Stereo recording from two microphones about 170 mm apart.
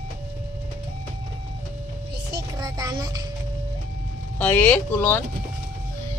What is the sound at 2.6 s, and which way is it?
Music, 20° right (ahead or behind).